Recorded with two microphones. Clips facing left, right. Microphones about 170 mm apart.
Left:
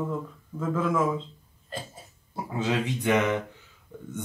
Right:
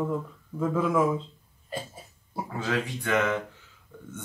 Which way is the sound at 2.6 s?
20° left (ahead or behind).